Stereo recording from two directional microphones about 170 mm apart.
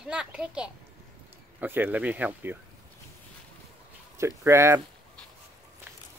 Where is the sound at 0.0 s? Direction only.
5° right (ahead or behind).